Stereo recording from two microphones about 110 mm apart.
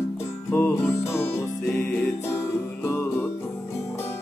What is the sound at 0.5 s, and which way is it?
Music, 10° left (ahead or behind).